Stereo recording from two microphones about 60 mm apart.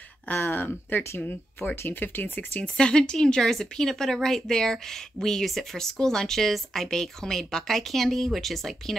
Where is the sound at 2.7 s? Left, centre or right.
Centre.